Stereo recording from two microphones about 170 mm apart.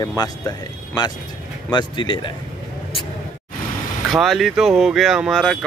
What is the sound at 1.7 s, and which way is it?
Speech, 25° left (ahead or behind).